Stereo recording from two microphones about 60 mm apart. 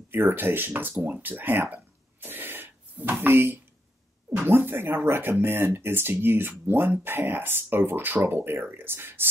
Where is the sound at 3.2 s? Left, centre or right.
Right.